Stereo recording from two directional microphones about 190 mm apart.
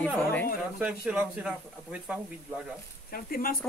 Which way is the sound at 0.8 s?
10° right (ahead or behind).